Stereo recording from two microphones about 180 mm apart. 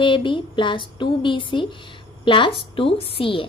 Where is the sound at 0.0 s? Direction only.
25° left (ahead or behind).